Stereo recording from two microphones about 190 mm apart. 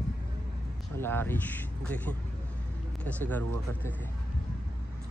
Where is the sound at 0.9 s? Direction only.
10° left (ahead or behind).